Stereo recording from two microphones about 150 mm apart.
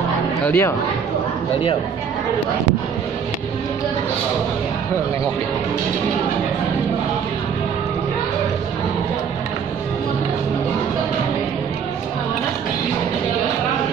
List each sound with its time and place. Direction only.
0.5 s speech: 20° left (ahead or behind)